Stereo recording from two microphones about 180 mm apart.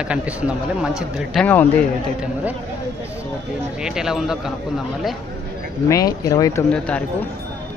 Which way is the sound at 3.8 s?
5° right (ahead or behind).